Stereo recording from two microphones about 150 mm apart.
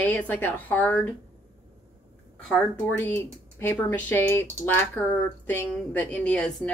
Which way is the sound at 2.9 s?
15° left (ahead or behind).